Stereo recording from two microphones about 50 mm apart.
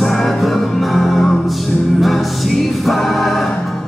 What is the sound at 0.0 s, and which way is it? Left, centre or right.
Music, centre.